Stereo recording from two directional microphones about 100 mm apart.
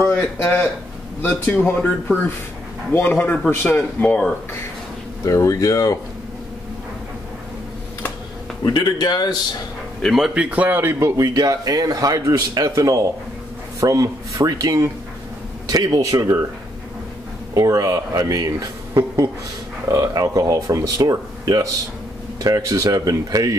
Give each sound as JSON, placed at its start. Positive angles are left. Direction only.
{"t": 0.0, "sound": "speech", "side_deg": 15}
{"t": 5.2, "sound": "speech", "side_deg": 30}
{"t": 8.6, "sound": "speech", "side_deg": 45}
{"t": 10.0, "sound": "a man's voice", "side_deg": -5}
{"t": 17.6, "sound": "a man's voice", "side_deg": -35}